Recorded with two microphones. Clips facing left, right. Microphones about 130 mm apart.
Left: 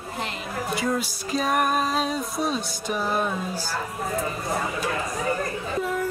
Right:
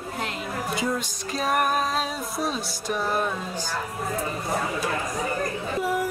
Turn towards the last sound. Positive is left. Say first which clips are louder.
# right 1 dB
turn(degrees=-10)  # may be behind; listen again after turning